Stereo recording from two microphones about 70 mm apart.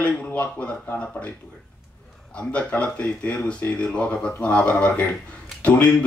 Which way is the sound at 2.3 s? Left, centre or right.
Centre.